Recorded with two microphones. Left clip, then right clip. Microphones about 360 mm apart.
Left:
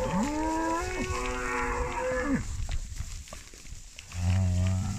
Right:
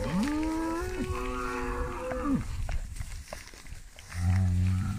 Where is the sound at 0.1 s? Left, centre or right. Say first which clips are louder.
Left 2 dB; left.